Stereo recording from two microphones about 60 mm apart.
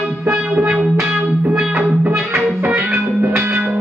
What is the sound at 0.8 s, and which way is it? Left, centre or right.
Music, centre.